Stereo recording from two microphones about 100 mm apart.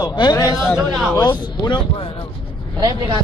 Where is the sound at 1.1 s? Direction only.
45° left (ahead or behind).